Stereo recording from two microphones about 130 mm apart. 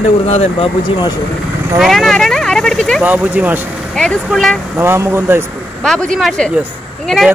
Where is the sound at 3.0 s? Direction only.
10° right (ahead or behind).